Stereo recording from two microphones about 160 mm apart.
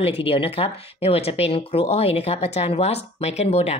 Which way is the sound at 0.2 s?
35° left (ahead or behind).